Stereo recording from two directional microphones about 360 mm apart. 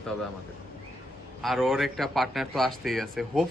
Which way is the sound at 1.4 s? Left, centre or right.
Centre.